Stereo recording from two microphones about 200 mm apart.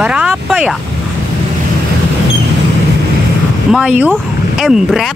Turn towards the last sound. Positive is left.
turn(degrees=-5)  # may be behind; listen again after turning